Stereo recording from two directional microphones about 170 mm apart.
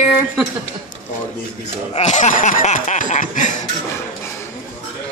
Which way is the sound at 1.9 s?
40° left (ahead or behind).